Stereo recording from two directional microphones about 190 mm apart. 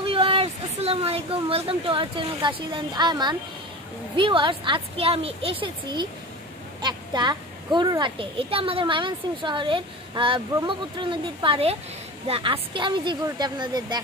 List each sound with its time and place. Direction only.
0.0 s a child's voice: 30° right (ahead or behind)